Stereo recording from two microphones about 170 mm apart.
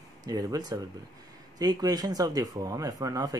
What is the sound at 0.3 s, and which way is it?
Speech, 20° right (ahead or behind).